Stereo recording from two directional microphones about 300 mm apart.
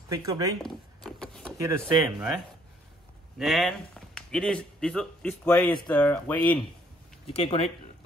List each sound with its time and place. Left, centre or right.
0.1 s speech: centre
0.6 s a sound: centre
1.6 s speech: centre
3.3 s speech: centre
7.2 s speech: centre